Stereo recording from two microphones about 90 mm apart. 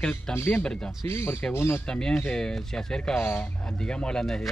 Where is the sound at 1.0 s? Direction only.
25° left (ahead or behind).